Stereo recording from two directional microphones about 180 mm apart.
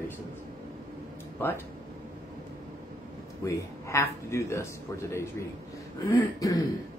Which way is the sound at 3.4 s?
15° left (ahead or behind).